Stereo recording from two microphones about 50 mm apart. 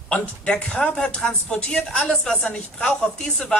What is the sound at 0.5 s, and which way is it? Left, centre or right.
A man's voice, centre.